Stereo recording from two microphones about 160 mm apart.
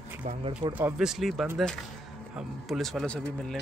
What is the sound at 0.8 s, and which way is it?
Speech, 5° right (ahead or behind).